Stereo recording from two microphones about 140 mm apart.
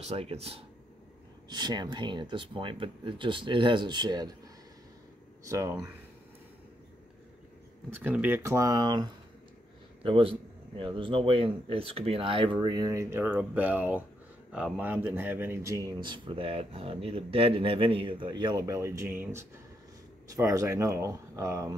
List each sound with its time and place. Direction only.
0.0 s speech: 45° right (ahead or behind)
1.5 s speech: 30° right (ahead or behind)
5.4 s speech: 20° right (ahead or behind)
7.9 s speech: 10° right (ahead or behind); by 12.5 s 40° right (ahead or behind)
12.5 s speech: 25° right (ahead or behind)